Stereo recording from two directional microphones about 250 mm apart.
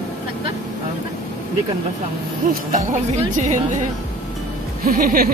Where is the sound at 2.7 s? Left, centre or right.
Right.